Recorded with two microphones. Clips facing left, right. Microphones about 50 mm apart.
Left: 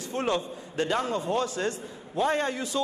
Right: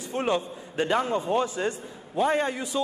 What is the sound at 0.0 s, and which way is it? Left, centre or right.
A man's voice, centre.